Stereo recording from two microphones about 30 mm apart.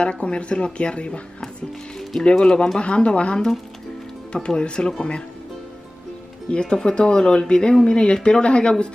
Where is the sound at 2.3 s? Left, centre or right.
Left.